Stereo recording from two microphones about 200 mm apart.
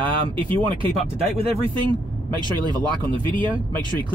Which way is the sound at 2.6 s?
20° right (ahead or behind).